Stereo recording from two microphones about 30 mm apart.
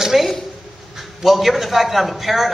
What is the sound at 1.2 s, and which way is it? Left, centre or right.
A man's voice, centre.